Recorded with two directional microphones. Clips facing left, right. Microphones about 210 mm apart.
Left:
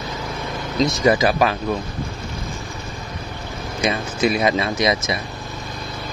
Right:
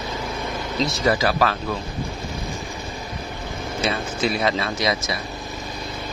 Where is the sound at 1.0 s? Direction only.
20° left (ahead or behind).